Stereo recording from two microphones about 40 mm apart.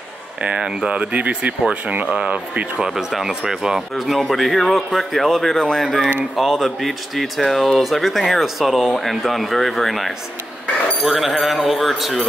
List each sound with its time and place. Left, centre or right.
0.6 s speech: centre
1.4 s speech: right
2.9 s speech: centre
3.9 s speech: centre